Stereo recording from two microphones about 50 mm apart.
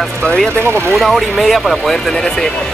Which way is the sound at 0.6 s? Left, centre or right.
Right.